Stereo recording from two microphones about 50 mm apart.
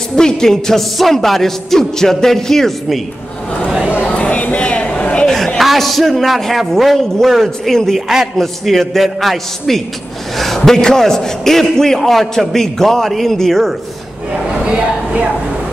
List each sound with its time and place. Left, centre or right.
0.1 s a man's voice: centre
4.0 s chatter: left
5.2 s chatter: centre
5.6 s a man's voice: centre